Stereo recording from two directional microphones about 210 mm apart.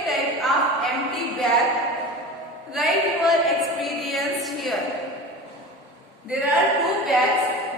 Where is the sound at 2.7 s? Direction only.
Centre (ahead or behind).